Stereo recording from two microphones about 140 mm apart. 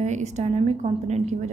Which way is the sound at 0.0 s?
55° right (ahead or behind).